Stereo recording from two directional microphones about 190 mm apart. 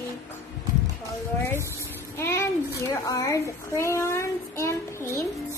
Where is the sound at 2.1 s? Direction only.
15° left (ahead or behind).